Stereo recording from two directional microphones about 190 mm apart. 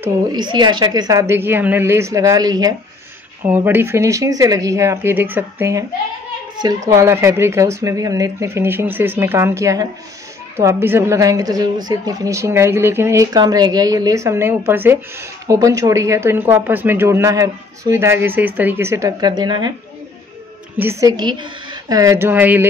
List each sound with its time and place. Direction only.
0.0 s speech: 20° right (ahead or behind)
6.9 s speech: 15° right (ahead or behind)
20.7 s speech: 15° right (ahead or behind)